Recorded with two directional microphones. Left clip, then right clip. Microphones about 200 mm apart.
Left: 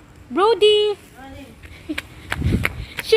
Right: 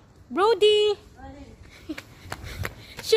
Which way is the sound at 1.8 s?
15° right (ahead or behind).